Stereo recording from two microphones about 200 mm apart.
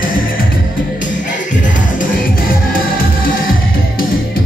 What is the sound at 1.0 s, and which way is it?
Music, 40° left (ahead or behind).